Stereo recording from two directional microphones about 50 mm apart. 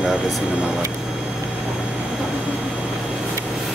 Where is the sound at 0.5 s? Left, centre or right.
Centre.